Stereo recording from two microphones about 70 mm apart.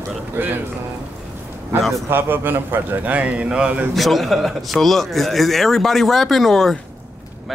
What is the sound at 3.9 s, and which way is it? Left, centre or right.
Speech, centre.